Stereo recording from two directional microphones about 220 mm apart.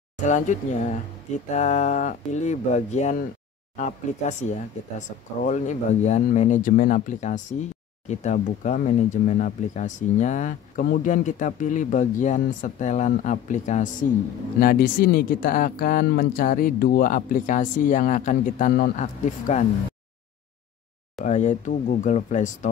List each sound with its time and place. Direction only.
0.2 s speech: 35° left (ahead or behind)
21.2 s speech: 35° left (ahead or behind)